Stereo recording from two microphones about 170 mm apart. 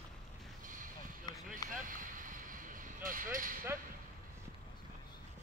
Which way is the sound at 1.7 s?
50° right (ahead or behind).